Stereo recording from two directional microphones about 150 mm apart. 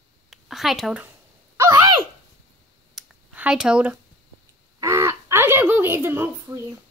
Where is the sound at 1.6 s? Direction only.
20° right (ahead or behind).